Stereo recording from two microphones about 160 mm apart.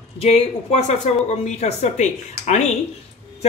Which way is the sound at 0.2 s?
40° left (ahead or behind).